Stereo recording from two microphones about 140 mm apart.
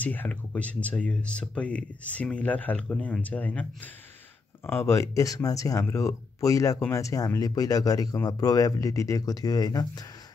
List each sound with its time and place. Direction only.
0.0 s speech: 10° left (ahead or behind); by 10.0 s 25° left (ahead or behind)